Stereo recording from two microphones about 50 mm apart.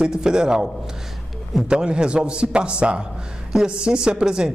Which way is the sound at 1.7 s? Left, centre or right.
Centre.